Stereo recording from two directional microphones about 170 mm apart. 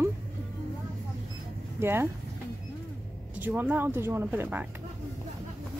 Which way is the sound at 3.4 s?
10° right (ahead or behind).